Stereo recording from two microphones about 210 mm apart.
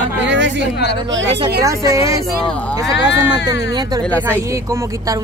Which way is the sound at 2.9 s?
55° left (ahead or behind).